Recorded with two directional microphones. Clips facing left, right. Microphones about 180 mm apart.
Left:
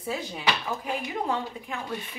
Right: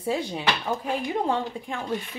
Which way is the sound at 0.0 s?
30° right (ahead or behind).